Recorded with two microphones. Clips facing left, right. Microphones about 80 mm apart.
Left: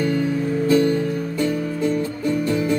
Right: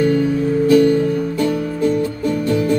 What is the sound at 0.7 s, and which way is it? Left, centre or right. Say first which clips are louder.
Music: right 5 dB; left.